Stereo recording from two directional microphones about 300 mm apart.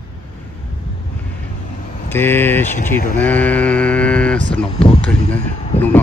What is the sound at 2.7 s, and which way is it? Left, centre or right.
Speech, left.